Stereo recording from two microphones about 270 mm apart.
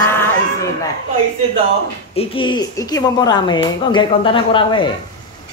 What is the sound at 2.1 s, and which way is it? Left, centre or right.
Speech, centre.